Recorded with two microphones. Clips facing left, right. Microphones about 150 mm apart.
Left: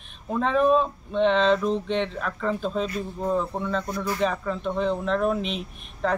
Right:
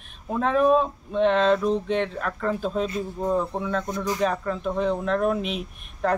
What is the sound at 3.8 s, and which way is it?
Speech, 15° right (ahead or behind).